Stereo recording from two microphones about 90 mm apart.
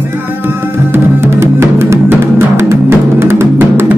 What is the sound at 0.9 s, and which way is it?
Music, 30° right (ahead or behind).